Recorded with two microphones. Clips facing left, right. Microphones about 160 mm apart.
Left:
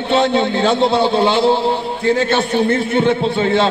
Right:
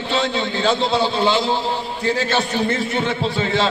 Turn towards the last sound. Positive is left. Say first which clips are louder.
# left 5 dB
turn(degrees=55)  # may be behind; listen again after turning